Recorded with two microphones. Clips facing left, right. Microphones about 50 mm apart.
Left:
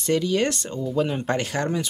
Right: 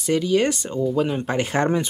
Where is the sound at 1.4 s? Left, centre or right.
Right.